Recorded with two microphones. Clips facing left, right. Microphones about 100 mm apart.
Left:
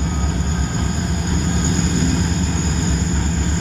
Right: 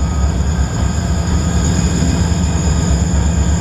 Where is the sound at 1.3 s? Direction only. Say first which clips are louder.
Right 1 dB; 45° right (ahead or behind).